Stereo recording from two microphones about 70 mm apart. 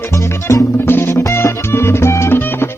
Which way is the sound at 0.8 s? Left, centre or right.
Left.